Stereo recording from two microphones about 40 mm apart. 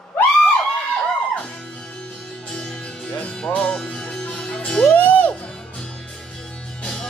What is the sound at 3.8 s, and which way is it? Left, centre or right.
Music, centre.